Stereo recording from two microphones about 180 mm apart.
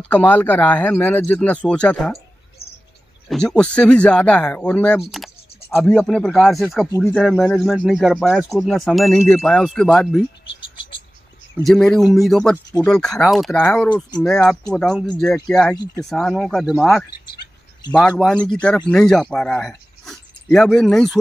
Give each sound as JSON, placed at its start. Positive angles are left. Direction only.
{"t": 0.1, "sound": "speech", "side_deg": 10}
{"t": 3.3, "sound": "speech", "side_deg": 5}
{"t": 10.6, "sound": "frog", "side_deg": 30}
{"t": 11.6, "sound": "speech", "side_deg": 0}
{"t": 15.7, "sound": "speech", "side_deg": 20}
{"t": 16.1, "sound": "speech", "side_deg": 5}
{"t": 17.9, "sound": "speech", "side_deg": 5}